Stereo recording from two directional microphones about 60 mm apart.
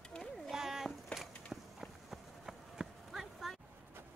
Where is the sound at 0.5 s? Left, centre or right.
Centre.